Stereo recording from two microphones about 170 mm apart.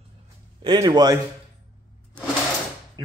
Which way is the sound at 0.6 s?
25° right (ahead or behind).